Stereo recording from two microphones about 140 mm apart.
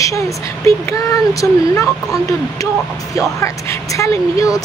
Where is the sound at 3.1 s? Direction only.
20° left (ahead or behind).